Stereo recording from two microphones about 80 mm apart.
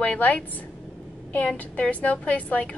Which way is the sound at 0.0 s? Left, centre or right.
Centre.